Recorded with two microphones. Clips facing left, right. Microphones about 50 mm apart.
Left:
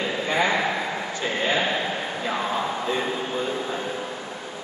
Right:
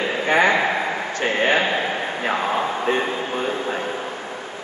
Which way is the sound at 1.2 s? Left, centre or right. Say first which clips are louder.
Right 6 dB; right.